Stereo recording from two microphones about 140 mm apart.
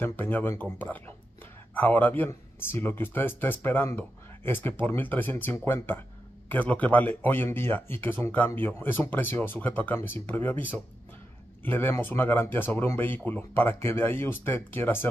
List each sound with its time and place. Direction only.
0.0 s speech: 15° left (ahead or behind)